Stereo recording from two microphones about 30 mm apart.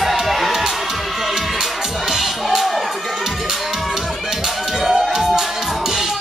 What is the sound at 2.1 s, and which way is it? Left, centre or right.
Music, centre.